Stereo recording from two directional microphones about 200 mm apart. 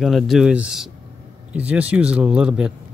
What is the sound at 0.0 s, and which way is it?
Speech, centre (ahead or behind).